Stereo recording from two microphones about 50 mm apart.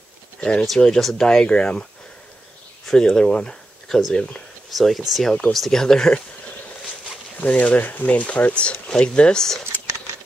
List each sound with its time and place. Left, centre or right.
0.4 s speech: centre
2.9 s speech: centre
4.6 s speech: centre
7.3 s speech: left